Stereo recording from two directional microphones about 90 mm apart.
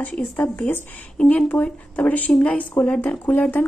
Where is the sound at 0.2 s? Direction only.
20° left (ahead or behind).